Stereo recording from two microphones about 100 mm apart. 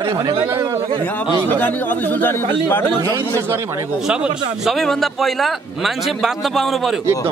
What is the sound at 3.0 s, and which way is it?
Speech, 25° right (ahead or behind).